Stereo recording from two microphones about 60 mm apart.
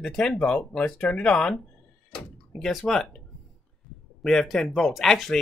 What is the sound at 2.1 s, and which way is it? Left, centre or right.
Door, centre.